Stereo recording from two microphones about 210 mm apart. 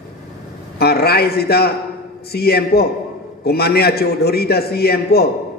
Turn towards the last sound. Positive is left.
turn(degrees=50)  # may be behind; listen again after turning